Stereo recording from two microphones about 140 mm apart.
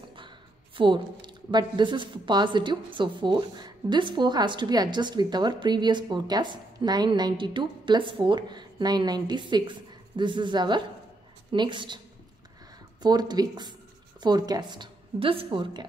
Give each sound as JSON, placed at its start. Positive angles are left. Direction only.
{"t": 0.7, "sound": "speech", "side_deg": -35}
{"t": 13.0, "sound": "speech", "side_deg": -30}